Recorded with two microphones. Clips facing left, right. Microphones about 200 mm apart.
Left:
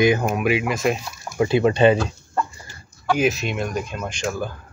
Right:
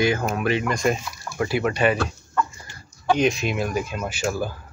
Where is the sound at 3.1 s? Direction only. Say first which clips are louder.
Left 2 dB; 5° left (ahead or behind).